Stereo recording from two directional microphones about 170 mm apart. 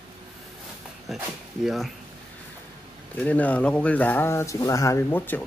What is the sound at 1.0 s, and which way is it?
Speech, centre (ahead or behind).